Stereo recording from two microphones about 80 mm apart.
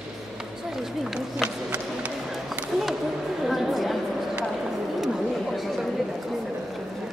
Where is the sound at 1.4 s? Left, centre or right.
Centre.